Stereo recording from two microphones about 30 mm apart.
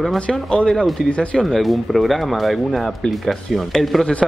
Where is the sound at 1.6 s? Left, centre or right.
Centre.